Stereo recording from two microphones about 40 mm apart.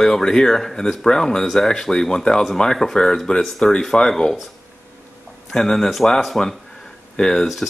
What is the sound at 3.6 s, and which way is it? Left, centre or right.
Speech, left.